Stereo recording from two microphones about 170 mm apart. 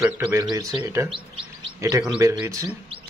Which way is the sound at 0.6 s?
20° right (ahead or behind).